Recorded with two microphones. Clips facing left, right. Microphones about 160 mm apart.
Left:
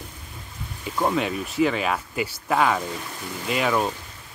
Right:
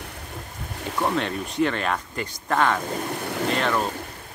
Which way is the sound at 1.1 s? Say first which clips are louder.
Left 1 dB; 5° left (ahead or behind).